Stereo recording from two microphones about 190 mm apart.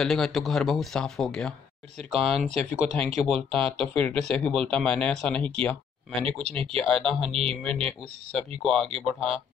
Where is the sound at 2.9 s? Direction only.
30° right (ahead or behind).